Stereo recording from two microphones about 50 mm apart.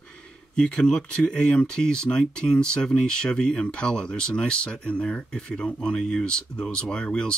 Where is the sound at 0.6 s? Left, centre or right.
Centre.